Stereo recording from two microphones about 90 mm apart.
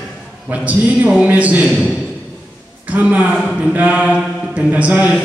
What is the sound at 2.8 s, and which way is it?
A man's voice, 15° right (ahead or behind).